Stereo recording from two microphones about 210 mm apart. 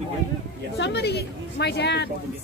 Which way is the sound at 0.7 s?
55° left (ahead or behind).